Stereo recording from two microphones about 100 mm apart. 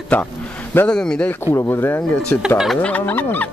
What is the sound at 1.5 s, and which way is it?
Speech, 25° left (ahead or behind).